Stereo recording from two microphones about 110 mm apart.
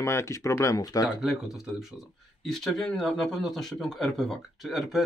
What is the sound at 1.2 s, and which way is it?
A man's voice, 5° right (ahead or behind).